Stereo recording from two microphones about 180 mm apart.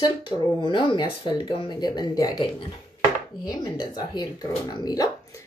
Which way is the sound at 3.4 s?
25° left (ahead or behind).